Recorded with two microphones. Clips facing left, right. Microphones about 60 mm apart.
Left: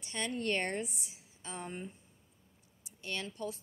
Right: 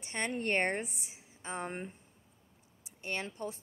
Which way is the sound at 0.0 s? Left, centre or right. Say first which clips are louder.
Right 1 dB; right.